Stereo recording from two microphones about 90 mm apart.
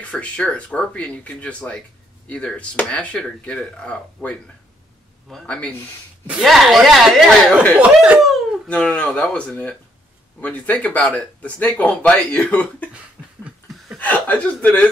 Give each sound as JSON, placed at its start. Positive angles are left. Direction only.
{"t": 0.1, "sound": "speech", "side_deg": 10}
{"t": 6.4, "sound": "speech", "side_deg": 0}
{"t": 7.8, "sound": "speech", "side_deg": -15}
{"t": 8.6, "sound": "speech", "side_deg": 10}
{"t": 13.2, "sound": "snicker", "side_deg": -10}
{"t": 13.9, "sound": "speech", "side_deg": 15}